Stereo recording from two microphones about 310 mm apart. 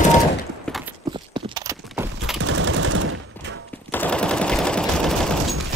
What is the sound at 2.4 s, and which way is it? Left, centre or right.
Machine gun, right.